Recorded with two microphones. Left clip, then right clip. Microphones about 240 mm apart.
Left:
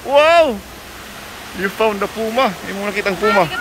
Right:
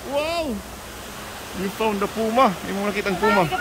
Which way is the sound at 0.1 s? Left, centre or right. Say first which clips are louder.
Left 14 dB; centre.